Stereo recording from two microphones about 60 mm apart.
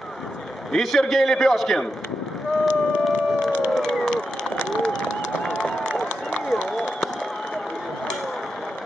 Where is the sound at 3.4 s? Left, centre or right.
Centre.